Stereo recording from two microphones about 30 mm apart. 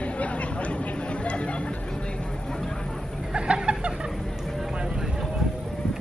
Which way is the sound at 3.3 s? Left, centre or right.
Right.